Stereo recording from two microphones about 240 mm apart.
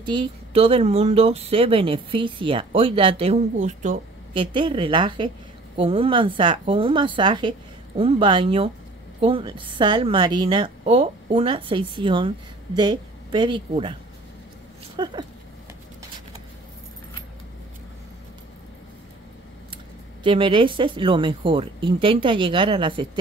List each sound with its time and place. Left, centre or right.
0.0 s speech: centre
15.0 s a sound: centre
20.2 s speech: right